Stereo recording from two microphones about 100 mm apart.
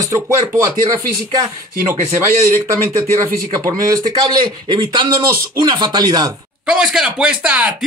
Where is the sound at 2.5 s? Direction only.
30° right (ahead or behind).